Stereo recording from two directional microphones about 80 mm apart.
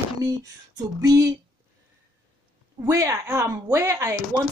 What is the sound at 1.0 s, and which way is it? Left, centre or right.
Speech, right.